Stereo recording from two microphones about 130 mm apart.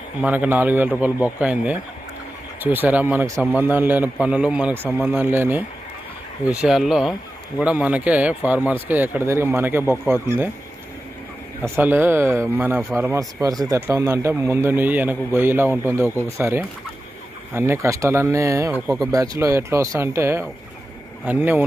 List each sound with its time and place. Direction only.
0.2 s a man's voice: 10° right (ahead or behind)
11.6 s a man's voice: 15° right (ahead or behind)